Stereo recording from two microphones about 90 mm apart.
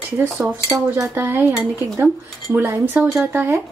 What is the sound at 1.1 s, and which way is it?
Speech, 25° right (ahead or behind).